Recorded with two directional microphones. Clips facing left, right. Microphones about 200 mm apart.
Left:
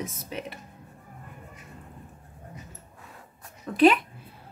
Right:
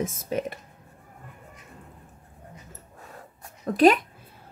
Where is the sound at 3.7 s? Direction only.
40° right (ahead or behind).